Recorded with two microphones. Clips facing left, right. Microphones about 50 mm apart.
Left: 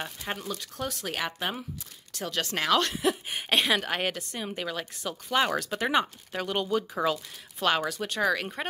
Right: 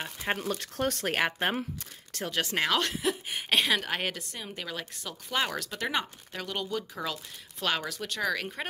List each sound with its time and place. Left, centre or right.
0.2 s speech: right
0.5 s speech: right
2.2 s speech: centre
3.1 s a woman's voice: centre; by 7.2 s left
7.6 s speech: centre